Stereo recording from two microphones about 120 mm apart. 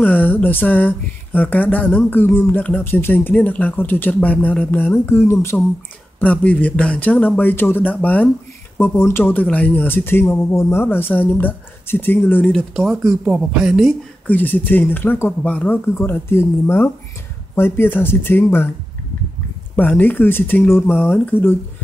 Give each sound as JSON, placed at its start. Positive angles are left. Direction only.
{"t": 0.0, "sound": "speech", "side_deg": 15}
{"t": 12.5, "sound": "speech", "side_deg": 0}
{"t": 14.2, "sound": "speech", "side_deg": 15}
{"t": 19.7, "sound": "speech", "side_deg": 15}